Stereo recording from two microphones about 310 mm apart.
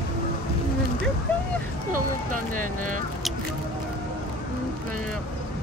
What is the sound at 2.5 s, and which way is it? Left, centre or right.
Vehicle, right.